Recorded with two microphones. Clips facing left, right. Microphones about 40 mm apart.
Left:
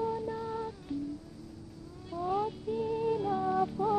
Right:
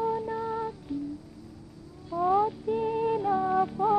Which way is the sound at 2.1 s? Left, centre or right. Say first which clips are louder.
Right 8 dB; right.